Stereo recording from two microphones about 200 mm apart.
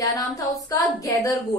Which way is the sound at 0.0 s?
15° left (ahead or behind).